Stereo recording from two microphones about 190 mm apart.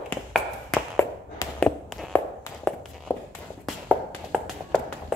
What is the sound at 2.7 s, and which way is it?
Walk, 5° left (ahead or behind).